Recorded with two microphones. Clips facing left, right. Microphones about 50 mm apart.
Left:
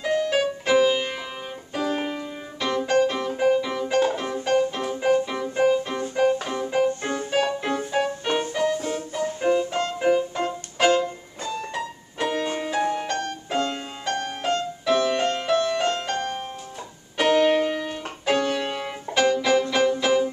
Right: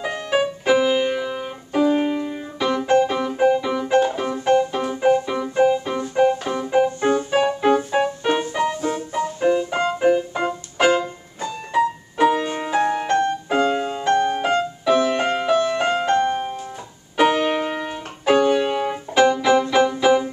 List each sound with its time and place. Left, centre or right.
0.0 s music: centre
3.9 s piano: centre
5.9 s keyboard: centre
7.2 s music: centre
9.7 s keyboard: centre
10.3 s music: centre
12.9 s music: right
13.5 s music: centre